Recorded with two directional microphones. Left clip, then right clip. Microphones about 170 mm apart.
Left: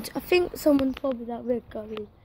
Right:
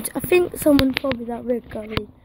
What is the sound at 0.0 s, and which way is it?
A woman's voice, 15° right (ahead or behind).